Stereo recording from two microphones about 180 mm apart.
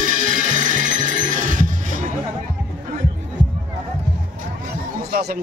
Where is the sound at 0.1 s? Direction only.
45° right (ahead or behind).